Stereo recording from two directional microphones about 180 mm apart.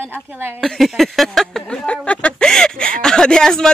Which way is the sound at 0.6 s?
Centre (ahead or behind).